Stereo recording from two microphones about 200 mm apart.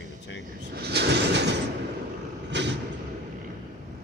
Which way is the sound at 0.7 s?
55° right (ahead or behind).